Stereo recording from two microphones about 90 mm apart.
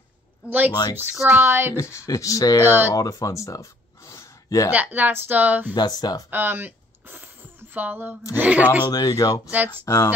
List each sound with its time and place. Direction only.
0.5 s speech: 20° right (ahead or behind)
1.8 s speech: 35° left (ahead or behind)
2.6 s speech: 25° right (ahead or behind)
2.9 s a sound: 40° left (ahead or behind)
4.7 s speech: 20° right (ahead or behind)
5.8 s speech: 50° left (ahead or behind)
6.3 s speech: 25° right (ahead or behind)
8.8 s speech: 45° left (ahead or behind)
9.8 s speech: 30° left (ahead or behind)